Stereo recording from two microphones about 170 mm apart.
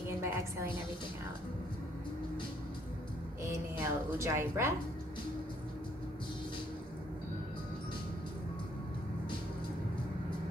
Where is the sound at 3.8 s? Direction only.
15° right (ahead or behind).